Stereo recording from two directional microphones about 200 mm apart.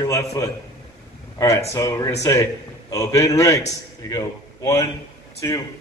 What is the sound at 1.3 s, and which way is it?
A man's voice, 15° left (ahead or behind).